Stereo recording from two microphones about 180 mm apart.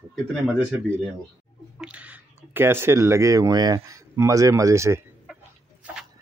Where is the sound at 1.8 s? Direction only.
5° right (ahead or behind).